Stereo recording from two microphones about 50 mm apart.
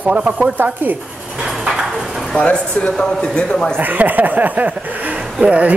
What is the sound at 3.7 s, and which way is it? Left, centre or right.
Speech, right.